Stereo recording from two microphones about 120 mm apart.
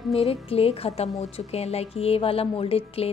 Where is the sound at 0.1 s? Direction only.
55° left (ahead or behind).